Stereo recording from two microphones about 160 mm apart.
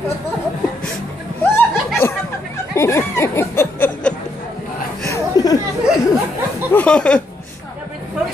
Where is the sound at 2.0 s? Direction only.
15° left (ahead or behind).